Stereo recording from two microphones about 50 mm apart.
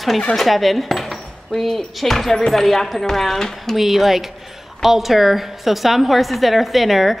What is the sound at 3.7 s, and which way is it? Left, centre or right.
A woman's voice, centre.